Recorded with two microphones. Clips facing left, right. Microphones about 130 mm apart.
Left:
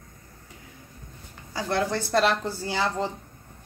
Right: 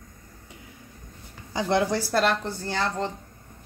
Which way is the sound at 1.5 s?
20° right (ahead or behind).